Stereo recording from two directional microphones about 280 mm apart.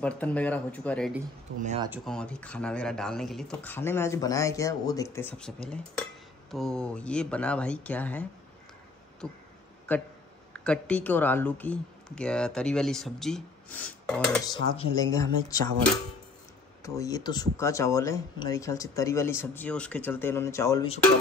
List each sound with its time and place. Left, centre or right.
0.0 s speech: centre
1.6 s speech: right
1.9 s speech: centre
9.9 s speech: centre
16.8 s speech: centre